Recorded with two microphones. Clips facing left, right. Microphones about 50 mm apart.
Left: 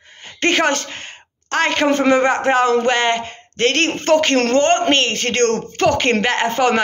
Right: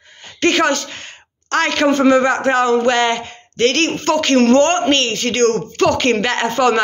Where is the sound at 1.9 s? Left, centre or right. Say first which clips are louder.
Right 3 dB; left.